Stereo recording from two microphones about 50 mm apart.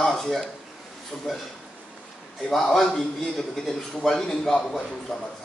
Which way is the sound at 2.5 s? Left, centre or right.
Centre.